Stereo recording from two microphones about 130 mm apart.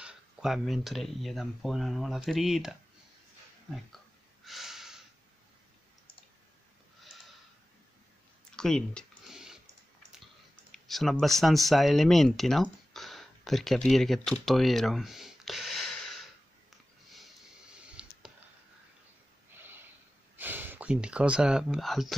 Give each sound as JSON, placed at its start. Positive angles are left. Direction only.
{"t": 0.0, "sound": "speech", "side_deg": -5}
{"t": 4.5, "sound": "snort", "side_deg": 0}
{"t": 8.5, "sound": "a sound", "side_deg": 5}
{"t": 10.7, "sound": "speech", "side_deg": 0}
{"t": 18.0, "sound": "a sound", "side_deg": -5}
{"t": 19.5, "sound": "snort", "side_deg": -15}
{"t": 20.3, "sound": "speech", "side_deg": -15}